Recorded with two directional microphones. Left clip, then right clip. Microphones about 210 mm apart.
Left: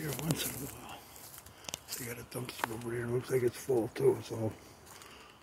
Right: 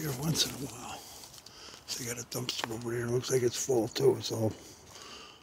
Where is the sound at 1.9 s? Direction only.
25° right (ahead or behind).